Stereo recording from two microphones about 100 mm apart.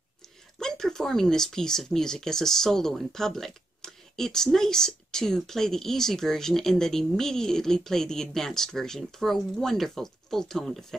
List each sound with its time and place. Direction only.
0.6 s speech: 5° left (ahead or behind)